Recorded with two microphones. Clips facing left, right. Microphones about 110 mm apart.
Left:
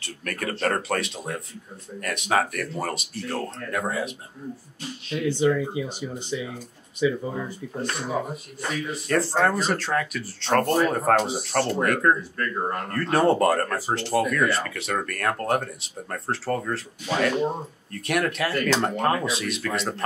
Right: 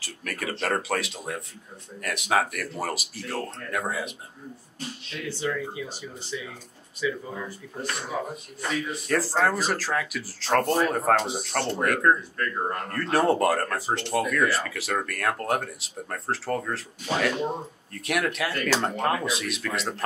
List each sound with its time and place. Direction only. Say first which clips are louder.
0.0 s speech: left 2 dB; centre (ahead or behind)
5.1 s speech: left 8 dB; 20° left (ahead or behind)
8.5 s speech: even; centre (ahead or behind)